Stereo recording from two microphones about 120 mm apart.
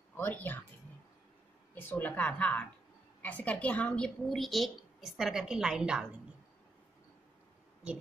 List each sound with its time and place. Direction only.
0.2 s speech: 15° left (ahead or behind)
1.8 s a woman's voice: 15° left (ahead or behind); by 6.0 s 5° right (ahead or behind)